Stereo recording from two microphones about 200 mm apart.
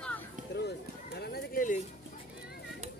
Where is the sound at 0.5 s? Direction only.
55° left (ahead or behind).